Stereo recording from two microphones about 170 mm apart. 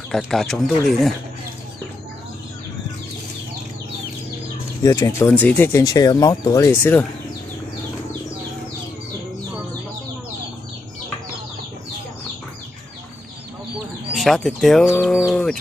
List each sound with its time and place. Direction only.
0.1 s speech: centre (ahead or behind)
4.8 s speech: 20° left (ahead or behind)
14.1 s speech: centre (ahead or behind)